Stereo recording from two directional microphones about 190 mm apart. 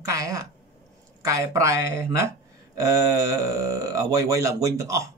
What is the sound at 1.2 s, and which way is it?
Speech, 15° right (ahead or behind).